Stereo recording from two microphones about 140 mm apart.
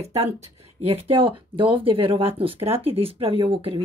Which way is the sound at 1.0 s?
40° right (ahead or behind).